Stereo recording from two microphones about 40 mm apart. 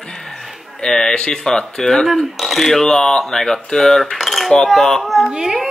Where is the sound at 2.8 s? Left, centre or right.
Centre.